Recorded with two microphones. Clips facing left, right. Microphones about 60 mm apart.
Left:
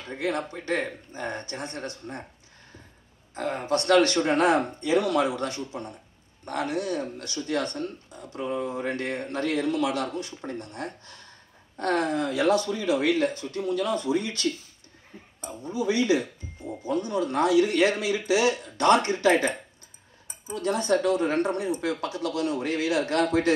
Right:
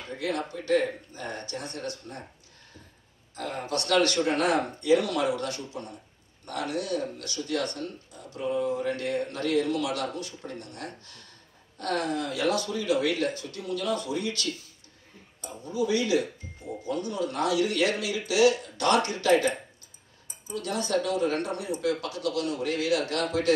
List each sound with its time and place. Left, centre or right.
0.1 s speech: left
3.3 s speech: left